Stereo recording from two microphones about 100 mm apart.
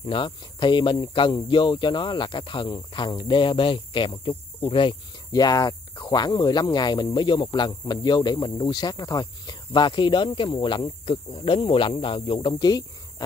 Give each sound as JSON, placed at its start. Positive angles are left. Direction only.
{"t": 0.0, "sound": "speech", "side_deg": 55}
{"t": 5.3, "sound": "speech", "side_deg": 40}